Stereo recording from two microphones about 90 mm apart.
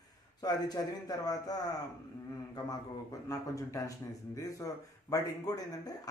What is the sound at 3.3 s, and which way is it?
Speech, 40° left (ahead or behind).